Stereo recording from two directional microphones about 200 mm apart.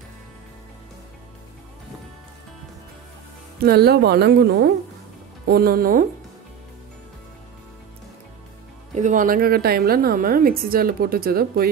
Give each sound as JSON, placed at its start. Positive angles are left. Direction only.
{"t": 3.5, "sound": "a woman's voice", "side_deg": -50}
{"t": 8.9, "sound": "a woman's voice", "side_deg": -40}